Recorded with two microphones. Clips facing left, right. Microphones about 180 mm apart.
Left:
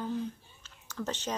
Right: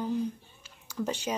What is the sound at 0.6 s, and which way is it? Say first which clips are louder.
Whispering: right 4 dB; 10° right (ahead or behind).